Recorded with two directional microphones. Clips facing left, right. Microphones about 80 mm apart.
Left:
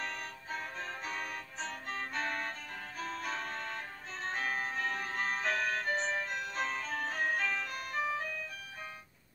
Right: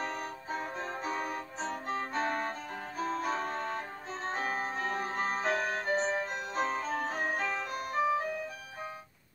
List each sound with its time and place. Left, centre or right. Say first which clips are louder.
0.0 s music: right 4 dB; centre